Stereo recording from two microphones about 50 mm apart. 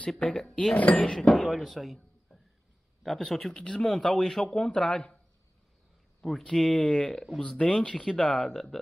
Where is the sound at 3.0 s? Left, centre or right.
Centre.